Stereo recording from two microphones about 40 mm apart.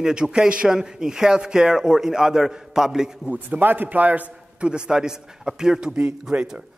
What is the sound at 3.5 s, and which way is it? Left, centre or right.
A man's voice, right.